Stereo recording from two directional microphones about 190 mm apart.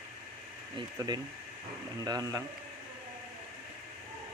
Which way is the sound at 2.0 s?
20° right (ahead or behind).